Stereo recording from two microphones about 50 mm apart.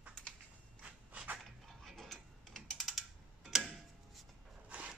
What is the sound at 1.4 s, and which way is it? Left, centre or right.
Mechanisms, centre.